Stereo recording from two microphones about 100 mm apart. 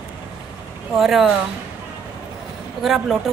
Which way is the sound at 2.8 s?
Centre (ahead or behind).